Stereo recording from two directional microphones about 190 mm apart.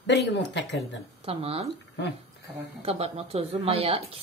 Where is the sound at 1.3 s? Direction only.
30° right (ahead or behind).